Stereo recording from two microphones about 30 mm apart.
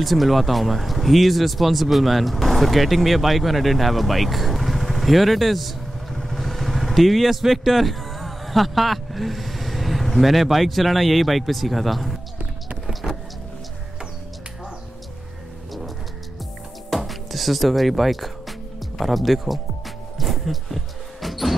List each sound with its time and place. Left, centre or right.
0.0 s speech: centre
13.0 s power windows: right
16.9 s music: centre
18.9 s speech: centre
20.2 s basketball bounce: centre